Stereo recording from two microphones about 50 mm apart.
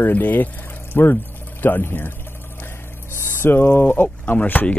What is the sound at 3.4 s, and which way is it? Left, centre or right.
Speech, left.